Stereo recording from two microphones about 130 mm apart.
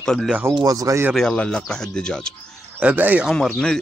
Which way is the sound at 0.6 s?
25° right (ahead or behind).